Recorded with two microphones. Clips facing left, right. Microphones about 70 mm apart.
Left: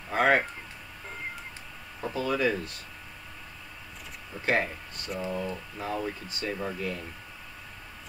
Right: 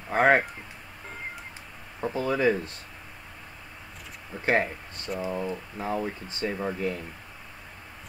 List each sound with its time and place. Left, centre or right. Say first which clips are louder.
0.1 s speech: right 3 dB; right
2.0 s speech: right 2 dB; right
4.5 s speech: right 2 dB; right